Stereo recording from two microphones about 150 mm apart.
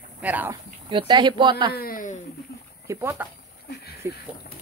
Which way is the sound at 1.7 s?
70° left (ahead or behind).